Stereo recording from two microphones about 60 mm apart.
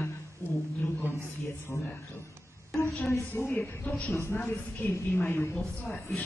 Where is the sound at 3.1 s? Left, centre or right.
Left.